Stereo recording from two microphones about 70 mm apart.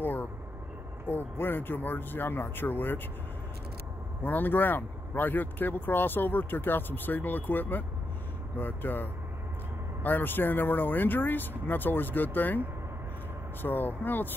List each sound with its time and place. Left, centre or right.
0.0 s vehicle: left
1.0 s speech: left
4.2 s speech: left